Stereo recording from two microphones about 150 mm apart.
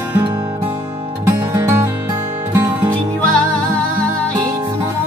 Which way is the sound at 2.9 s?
10° left (ahead or behind).